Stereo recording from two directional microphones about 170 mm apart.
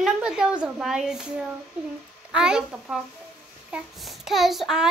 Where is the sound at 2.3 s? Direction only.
5° right (ahead or behind).